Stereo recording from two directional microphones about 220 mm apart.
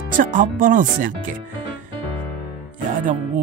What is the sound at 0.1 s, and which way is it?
Speech, 35° right (ahead or behind).